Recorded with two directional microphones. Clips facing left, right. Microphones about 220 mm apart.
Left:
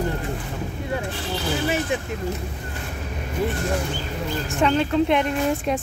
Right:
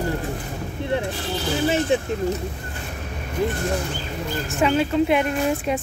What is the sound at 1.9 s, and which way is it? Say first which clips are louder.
Speech: right 5 dB; 30° right (ahead or behind).